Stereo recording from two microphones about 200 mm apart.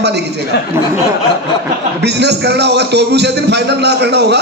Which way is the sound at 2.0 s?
55° right (ahead or behind).